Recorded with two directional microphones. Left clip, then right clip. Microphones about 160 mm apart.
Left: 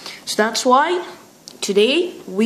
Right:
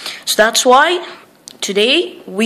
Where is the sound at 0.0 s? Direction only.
25° right (ahead or behind).